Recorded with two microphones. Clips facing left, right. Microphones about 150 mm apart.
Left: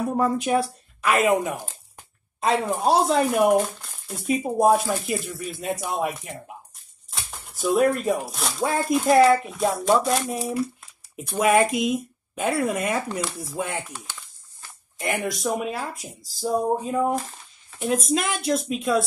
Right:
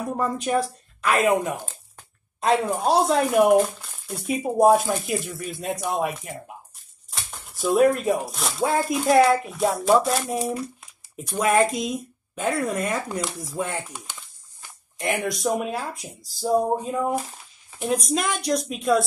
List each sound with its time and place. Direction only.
0.2 s speech: 5° left (ahead or behind)
13.8 s speech: 10° right (ahead or behind)
15.0 s speech: centre (ahead or behind)